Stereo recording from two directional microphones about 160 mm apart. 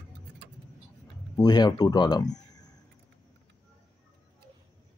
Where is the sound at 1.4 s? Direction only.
25° left (ahead or behind).